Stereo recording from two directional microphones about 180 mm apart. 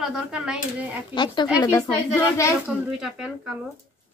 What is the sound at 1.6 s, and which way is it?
Speech, 15° left (ahead or behind).